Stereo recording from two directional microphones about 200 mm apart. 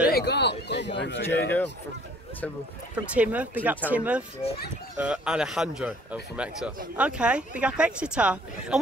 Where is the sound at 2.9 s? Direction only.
5° right (ahead or behind).